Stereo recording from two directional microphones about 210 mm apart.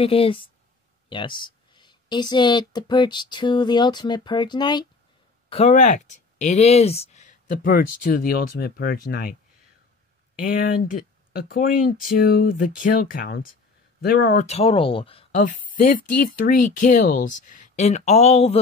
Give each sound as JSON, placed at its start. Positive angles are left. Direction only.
{"t": 0.0, "sound": "speech", "side_deg": 25}
{"t": 5.5, "sound": "speech", "side_deg": 30}
{"t": 10.4, "sound": "speech", "side_deg": 45}